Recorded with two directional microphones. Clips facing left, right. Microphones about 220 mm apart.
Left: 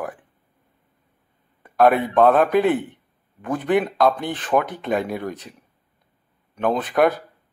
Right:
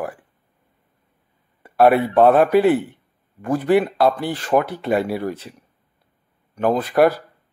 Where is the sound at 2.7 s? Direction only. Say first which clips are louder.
Right 3 dB; 15° left (ahead or behind).